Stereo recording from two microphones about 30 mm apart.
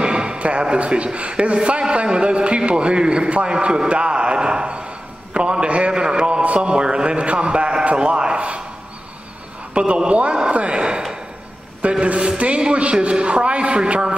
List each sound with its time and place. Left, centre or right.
0.0 s a sound: right
0.7 s a man's voice: right
5.9 s a man's voice: right
6.4 s mantra: right
6.7 s a man's voice: right
8.4 s a man's voice: right
9.8 s a man's voice: right